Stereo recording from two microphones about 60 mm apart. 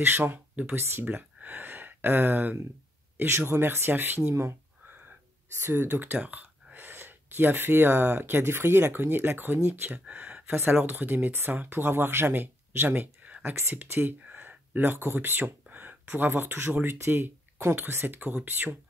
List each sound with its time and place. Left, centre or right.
0.0 s speech: right
1.0 s speech: right
4.3 s speech: right
4.8 s a sound: right
5.6 s speech: right
10.0 s speech: right
13.4 s speech: right
14.2 s a sound: right
16.2 s speech: right